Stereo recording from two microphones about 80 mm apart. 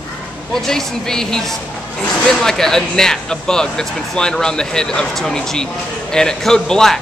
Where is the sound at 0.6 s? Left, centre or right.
Centre.